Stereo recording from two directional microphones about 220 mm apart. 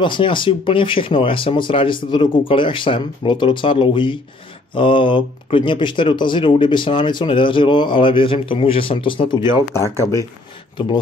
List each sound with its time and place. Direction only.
0.0 s speech: 20° left (ahead or behind)